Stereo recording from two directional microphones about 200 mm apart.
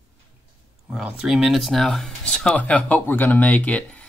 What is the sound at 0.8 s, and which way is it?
Speech, 5° right (ahead or behind).